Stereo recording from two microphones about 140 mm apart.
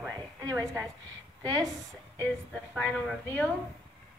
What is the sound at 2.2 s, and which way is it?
A woman's voice, 10° left (ahead or behind).